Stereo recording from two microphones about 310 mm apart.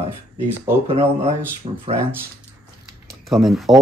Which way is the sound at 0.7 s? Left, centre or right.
Centre.